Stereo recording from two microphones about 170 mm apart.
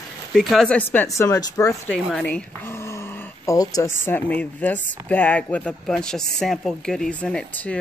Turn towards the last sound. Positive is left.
turn(degrees=10)  # may be behind; listen again after turning